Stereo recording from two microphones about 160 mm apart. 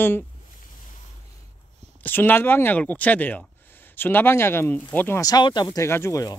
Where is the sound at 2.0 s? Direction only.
10° left (ahead or behind).